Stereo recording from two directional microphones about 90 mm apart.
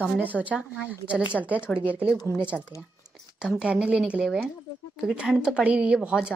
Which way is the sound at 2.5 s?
10° left (ahead or behind).